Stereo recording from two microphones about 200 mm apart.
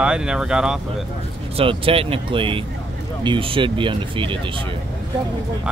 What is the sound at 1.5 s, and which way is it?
Speech, 25° right (ahead or behind).